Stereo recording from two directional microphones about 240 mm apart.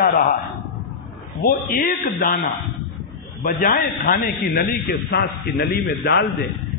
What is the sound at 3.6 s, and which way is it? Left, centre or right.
A man's voice, left.